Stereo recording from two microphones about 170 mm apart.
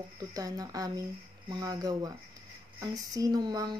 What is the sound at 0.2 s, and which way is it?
Speech, 20° right (ahead or behind).